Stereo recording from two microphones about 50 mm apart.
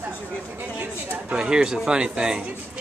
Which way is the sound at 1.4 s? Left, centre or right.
Centre.